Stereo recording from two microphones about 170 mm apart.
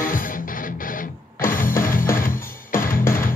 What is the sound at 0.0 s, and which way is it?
Music, 55° left (ahead or behind).